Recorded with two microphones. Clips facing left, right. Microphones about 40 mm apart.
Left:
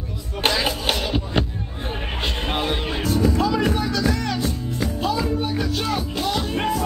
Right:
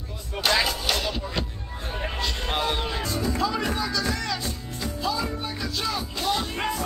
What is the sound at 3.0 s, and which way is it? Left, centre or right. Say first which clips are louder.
Music: left 6 dB; left.